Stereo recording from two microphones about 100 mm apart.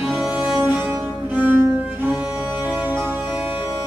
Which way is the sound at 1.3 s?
15° right (ahead or behind).